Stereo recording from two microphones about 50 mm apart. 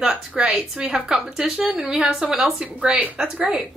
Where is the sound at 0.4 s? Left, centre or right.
Centre.